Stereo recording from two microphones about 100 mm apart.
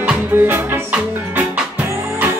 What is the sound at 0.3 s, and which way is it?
Music, 20° right (ahead or behind).